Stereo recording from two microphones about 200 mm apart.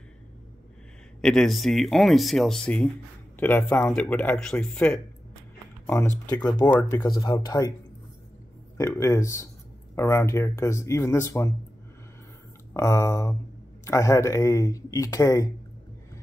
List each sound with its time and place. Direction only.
1.2 s speech: centre (ahead or behind); by 6.7 s 20° left (ahead or behind)
6.7 s speech: 5° left (ahead or behind)
7.0 s speech: 20° left (ahead or behind)
8.7 s speech: 15° left (ahead or behind)
12.7 s speech: 15° left (ahead or behind)